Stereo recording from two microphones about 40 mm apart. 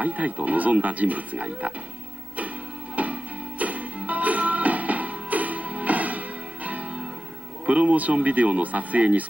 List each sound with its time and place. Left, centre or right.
0.0 s speech: right
3.0 s music: right
7.6 s speech: right